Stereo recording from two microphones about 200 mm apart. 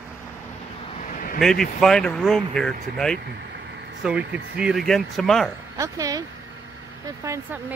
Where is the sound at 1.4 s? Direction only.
Centre (ahead or behind).